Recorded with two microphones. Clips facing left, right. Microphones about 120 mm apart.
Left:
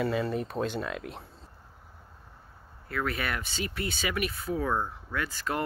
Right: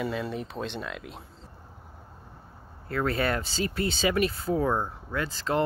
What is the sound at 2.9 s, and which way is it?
Speech, 30° right (ahead or behind).